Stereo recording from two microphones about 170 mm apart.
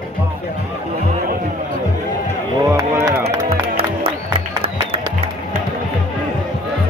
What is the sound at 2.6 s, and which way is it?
Chop, 15° right (ahead or behind).